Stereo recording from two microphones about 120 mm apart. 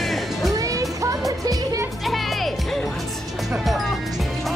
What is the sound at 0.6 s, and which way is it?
Music, 30° right (ahead or behind).